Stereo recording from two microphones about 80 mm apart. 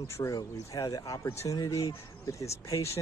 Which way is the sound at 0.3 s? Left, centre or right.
Left.